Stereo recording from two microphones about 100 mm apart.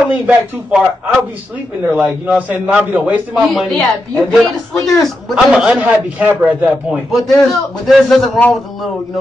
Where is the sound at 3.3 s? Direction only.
Centre (ahead or behind).